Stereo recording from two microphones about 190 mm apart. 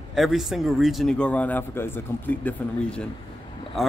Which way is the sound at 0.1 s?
Centre (ahead or behind).